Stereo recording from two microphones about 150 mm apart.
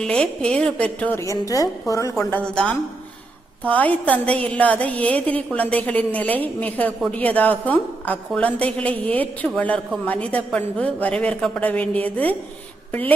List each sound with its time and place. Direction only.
0.0 s a woman's voice: 5° left (ahead or behind)
1.2 s a woman's voice: 20° left (ahead or behind)
2.5 s a woman's voice: 5° left (ahead or behind)